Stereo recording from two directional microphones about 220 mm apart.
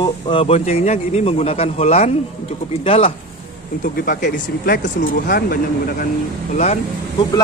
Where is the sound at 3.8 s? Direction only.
40° left (ahead or behind).